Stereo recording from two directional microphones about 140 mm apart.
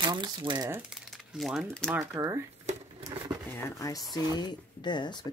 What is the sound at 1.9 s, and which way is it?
Speech, 20° right (ahead or behind).